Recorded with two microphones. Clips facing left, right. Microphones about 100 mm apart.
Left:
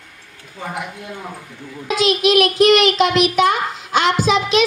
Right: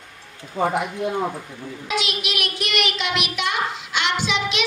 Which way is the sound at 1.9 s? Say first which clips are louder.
Left 11 dB; 40° left (ahead or behind).